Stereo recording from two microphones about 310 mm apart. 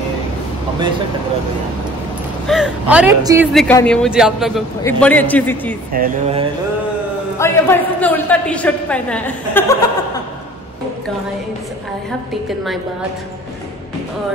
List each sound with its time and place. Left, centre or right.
2.4 s a man's voice: centre
3.6 s a man's voice: centre
5.9 s speech: right
7.3 s a man's voice: centre